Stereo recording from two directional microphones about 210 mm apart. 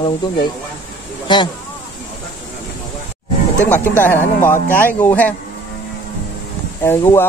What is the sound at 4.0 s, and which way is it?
Speech, 10° left (ahead or behind).